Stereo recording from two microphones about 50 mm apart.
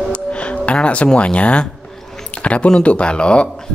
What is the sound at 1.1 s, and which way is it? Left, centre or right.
Speech, left.